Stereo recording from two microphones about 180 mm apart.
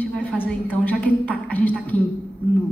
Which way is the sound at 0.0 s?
10° left (ahead or behind).